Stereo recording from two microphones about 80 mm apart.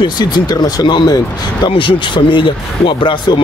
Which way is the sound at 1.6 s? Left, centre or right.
Left.